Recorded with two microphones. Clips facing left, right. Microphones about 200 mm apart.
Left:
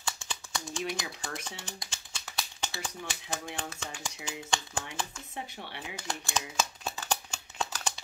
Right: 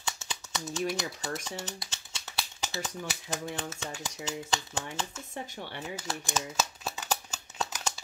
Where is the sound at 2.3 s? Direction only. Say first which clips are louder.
Right 2 dB; 5° right (ahead or behind).